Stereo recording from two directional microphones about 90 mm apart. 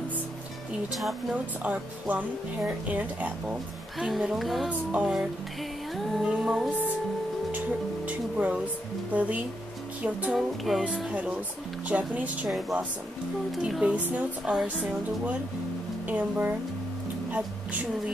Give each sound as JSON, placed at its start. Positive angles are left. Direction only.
{"t": 1.3, "sound": "speech", "side_deg": -15}
{"t": 4.0, "sound": "music", "side_deg": -5}
{"t": 4.6, "sound": "speech", "side_deg": -15}
{"t": 5.1, "sound": "music", "side_deg": 0}
{"t": 6.2, "sound": "speech", "side_deg": -10}
{"t": 7.5, "sound": "music", "side_deg": -15}
{"t": 9.1, "sound": "speech", "side_deg": -15}
{"t": 10.3, "sound": "music", "side_deg": 0}
{"t": 11.1, "sound": "speech", "side_deg": -15}
{"t": 12.4, "sound": "music", "side_deg": 0}
{"t": 13.6, "sound": "speech", "side_deg": -10}